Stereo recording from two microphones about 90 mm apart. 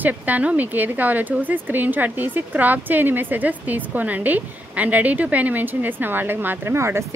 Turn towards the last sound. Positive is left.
turn(degrees=-30)  # may be behind; listen again after turning